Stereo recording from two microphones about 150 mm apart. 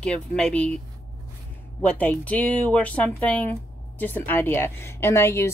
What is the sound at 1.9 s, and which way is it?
Speech, 10° left (ahead or behind).